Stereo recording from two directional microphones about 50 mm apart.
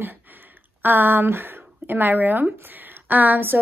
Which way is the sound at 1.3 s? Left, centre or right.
Right.